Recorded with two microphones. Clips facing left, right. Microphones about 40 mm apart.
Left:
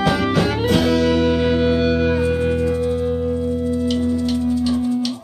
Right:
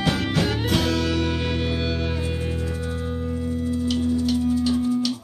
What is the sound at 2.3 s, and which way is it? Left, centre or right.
Music, left.